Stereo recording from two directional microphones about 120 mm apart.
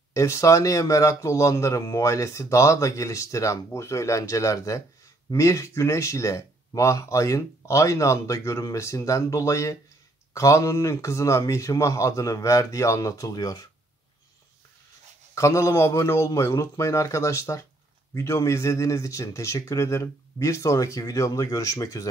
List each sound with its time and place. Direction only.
0.1 s a man's voice: 25° left (ahead or behind)
15.3 s a man's voice: 25° left (ahead or behind)